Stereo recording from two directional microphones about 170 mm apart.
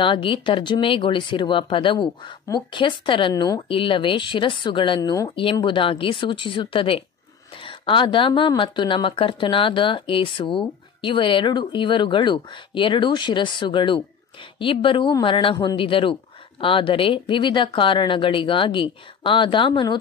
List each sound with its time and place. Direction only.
0.0 s speech: 30° left (ahead or behind)